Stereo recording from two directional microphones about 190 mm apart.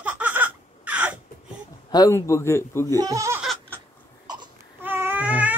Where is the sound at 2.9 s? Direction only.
20° right (ahead or behind).